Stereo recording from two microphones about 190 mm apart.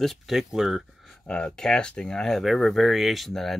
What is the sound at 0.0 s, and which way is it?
Speech, centre (ahead or behind).